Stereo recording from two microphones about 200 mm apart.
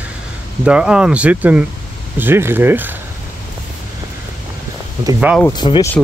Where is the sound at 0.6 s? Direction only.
5° right (ahead or behind).